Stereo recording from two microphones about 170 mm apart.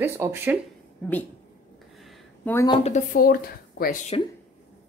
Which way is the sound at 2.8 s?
45° left (ahead or behind).